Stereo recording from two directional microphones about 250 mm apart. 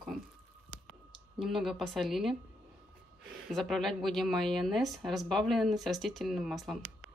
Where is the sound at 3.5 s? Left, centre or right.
Centre.